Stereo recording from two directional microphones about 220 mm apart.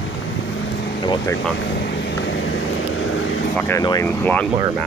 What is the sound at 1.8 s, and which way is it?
Vehicle, 50° left (ahead or behind).